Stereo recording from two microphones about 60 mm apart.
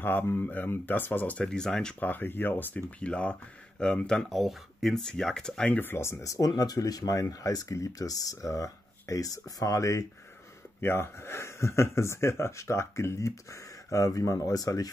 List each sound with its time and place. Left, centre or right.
0.0 s speech: left
1.5 s speech: centre
2.0 s speech: left
3.0 s speech: centre
5.7 s speech: left
5.9 s speech: left
6.2 s speech: left
10.8 s speech: left